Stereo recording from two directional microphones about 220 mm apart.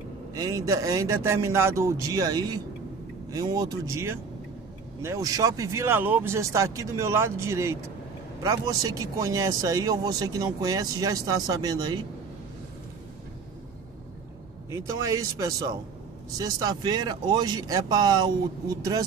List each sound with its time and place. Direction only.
0.3 s speech: 15° right (ahead or behind)
14.7 s speech: 15° right (ahead or behind)